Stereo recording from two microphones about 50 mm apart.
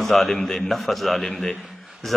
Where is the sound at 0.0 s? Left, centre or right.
Centre.